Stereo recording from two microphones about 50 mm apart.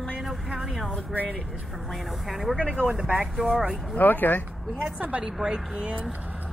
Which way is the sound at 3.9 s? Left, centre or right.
Left.